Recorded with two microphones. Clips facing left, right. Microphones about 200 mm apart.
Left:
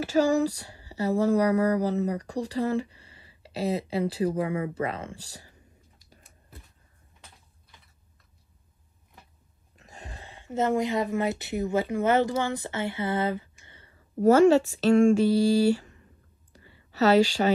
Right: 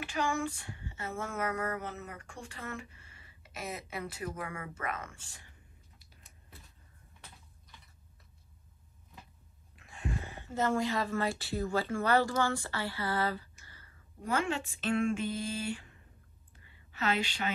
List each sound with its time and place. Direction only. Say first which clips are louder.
0.0 s speech: left 11 dB; 40° left (ahead or behind)
9.8 s speech: right 6 dB; 40° left (ahead or behind)
14.2 s speech: left 16 dB; 40° left (ahead or behind)
16.5 s a sound: left 13 dB; 35° left (ahead or behind)